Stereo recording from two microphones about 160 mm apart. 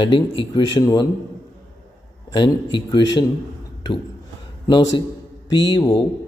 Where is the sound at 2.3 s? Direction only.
30° left (ahead or behind).